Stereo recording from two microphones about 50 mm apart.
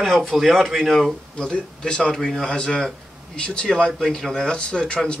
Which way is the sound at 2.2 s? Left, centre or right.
Centre.